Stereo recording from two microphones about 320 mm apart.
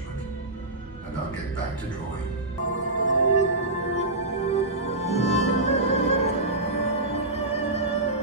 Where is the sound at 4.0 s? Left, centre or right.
Centre.